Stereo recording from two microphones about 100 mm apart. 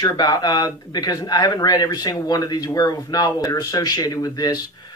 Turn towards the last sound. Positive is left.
turn(degrees=45)  # may be behind; listen again after turning